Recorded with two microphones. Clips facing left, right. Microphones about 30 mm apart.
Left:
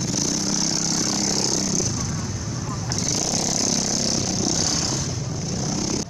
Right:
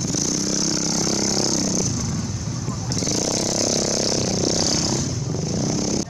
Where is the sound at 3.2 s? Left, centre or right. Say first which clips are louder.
Right 2 dB; right.